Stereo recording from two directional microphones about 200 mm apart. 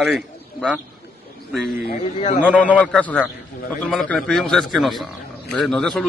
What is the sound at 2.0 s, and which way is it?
Speech, 35° left (ahead or behind).